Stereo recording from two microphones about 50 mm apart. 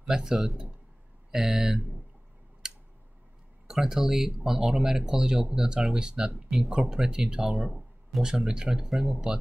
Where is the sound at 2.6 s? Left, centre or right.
Centre.